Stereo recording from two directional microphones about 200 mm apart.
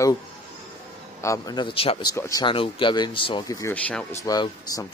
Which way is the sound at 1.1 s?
15° left (ahead or behind).